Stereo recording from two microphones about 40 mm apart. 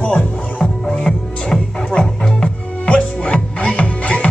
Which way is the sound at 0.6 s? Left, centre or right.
Centre.